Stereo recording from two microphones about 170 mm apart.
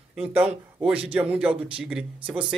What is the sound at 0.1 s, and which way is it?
A man's voice, 5° right (ahead or behind).